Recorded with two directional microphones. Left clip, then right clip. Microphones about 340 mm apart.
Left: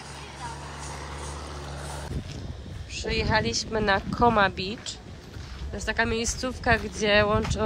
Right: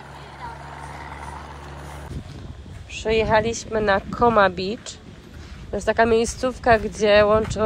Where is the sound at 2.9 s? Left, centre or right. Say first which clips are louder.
Right 7 dB; centre.